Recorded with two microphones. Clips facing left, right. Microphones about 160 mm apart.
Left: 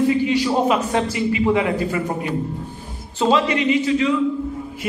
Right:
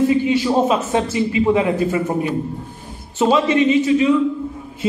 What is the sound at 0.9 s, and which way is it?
A man's voice, 25° right (ahead or behind).